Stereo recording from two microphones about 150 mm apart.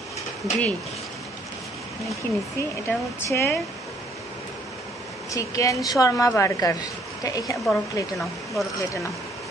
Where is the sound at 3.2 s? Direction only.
15° left (ahead or behind).